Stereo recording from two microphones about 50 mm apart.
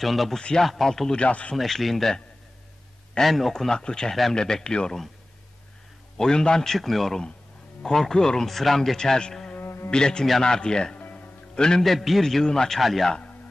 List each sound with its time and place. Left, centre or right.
0.0 s a man's voice: centre
1.1 s a man's voice: left
1.6 s a man's voice: centre
6.1 s a man's voice: centre
9.6 s insect: left
9.8 s a man's voice: centre
11.0 s music: left
11.5 s a man's voice: centre
11.8 s a man's voice: centre